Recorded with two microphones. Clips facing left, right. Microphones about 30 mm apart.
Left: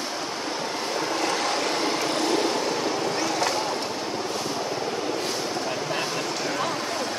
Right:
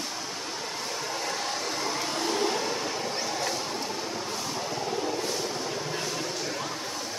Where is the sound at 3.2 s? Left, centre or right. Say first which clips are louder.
Left 6 dB; left.